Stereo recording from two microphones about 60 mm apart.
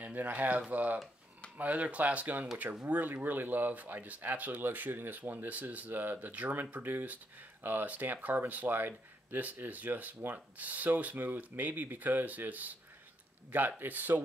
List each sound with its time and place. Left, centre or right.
0.0 s speech: right